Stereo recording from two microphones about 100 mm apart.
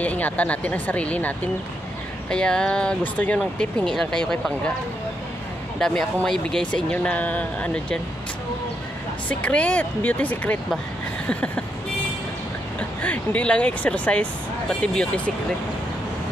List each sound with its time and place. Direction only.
0.0 s speech: 15° left (ahead or behind)
5.8 s speech: 5° left (ahead or behind)
9.3 s speech: 10° left (ahead or behind)
11.2 s vehicle: 15° left (ahead or behind)
13.0 s speech: 15° left (ahead or behind)